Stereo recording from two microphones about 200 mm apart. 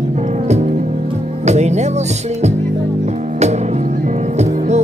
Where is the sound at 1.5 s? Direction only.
35° right (ahead or behind).